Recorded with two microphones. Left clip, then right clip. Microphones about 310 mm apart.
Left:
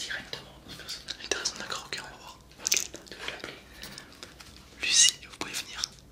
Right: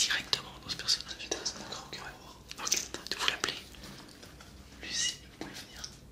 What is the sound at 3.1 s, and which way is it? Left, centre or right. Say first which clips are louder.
Whispering: right 7 dB; right.